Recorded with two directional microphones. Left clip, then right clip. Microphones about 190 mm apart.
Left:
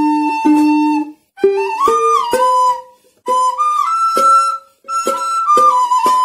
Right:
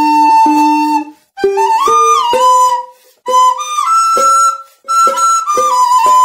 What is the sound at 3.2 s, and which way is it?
Flute, centre (ahead or behind).